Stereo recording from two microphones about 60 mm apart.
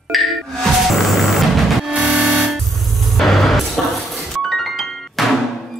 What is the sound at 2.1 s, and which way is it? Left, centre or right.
Music, centre.